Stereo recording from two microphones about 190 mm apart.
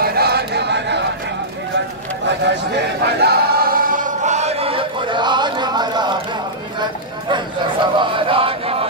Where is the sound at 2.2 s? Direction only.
65° right (ahead or behind).